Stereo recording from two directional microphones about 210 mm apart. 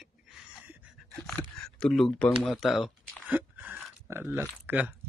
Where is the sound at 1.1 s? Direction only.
5° left (ahead or behind); by 4.4 s 10° right (ahead or behind).